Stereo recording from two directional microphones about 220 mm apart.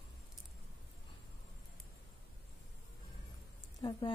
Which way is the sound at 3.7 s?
20° left (ahead or behind).